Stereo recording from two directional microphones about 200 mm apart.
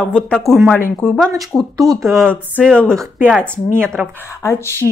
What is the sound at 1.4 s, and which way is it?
Speech, centre (ahead or behind).